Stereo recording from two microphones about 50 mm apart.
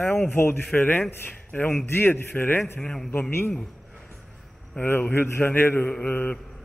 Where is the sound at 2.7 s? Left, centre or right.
Centre.